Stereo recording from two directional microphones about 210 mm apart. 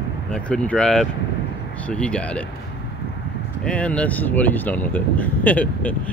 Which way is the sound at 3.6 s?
5° left (ahead or behind).